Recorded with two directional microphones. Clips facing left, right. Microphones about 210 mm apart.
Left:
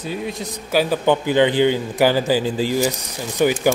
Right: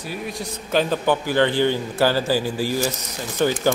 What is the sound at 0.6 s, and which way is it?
Speech, 10° left (ahead or behind).